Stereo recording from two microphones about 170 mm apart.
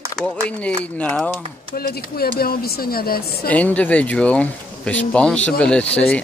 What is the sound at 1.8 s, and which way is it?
Speech, 60° left (ahead or behind).